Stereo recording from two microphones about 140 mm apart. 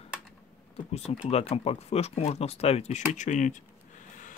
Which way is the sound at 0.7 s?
45° left (ahead or behind).